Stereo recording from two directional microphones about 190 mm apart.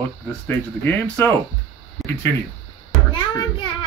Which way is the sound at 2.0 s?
Centre (ahead or behind).